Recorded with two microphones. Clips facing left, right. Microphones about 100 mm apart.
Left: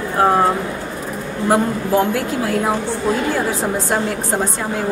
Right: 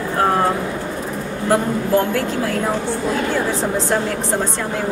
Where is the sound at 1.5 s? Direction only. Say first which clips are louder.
Even; 15° left (ahead or behind).